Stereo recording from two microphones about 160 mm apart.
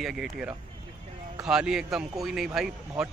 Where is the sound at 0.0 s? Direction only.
Centre (ahead or behind).